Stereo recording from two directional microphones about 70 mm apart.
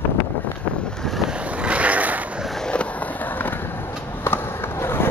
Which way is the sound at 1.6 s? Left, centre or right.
Centre.